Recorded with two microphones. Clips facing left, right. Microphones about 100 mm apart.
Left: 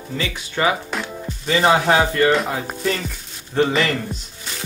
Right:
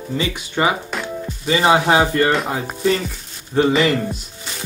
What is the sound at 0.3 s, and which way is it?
Speech, 20° right (ahead or behind).